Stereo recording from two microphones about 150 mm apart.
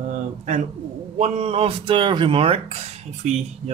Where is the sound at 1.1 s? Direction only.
45° right (ahead or behind).